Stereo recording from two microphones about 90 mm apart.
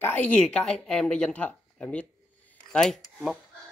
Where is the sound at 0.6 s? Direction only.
10° left (ahead or behind).